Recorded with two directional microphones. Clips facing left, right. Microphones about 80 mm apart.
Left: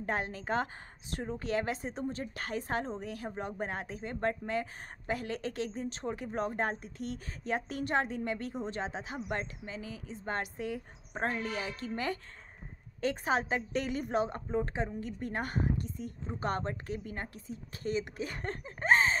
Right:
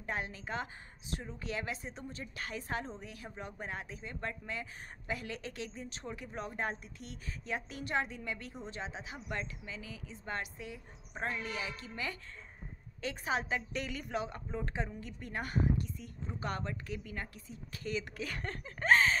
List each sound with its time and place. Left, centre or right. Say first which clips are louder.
0.0 s a woman's voice: left 5 dB; left
15.0 s speech: left 5 dB; left